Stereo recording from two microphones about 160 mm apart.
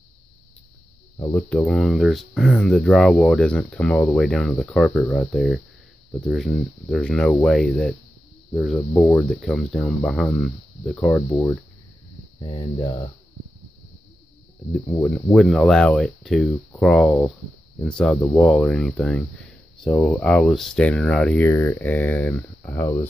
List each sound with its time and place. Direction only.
1.3 s speech: 10° left (ahead or behind)
12.4 s speech: 25° left (ahead or behind)
14.7 s speech: 5° left (ahead or behind)